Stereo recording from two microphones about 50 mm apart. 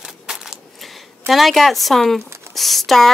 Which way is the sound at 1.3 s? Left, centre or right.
Centre.